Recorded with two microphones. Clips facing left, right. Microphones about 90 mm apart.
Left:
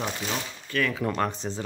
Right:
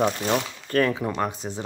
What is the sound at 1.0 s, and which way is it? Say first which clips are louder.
Speech: even; 10° right (ahead or behind).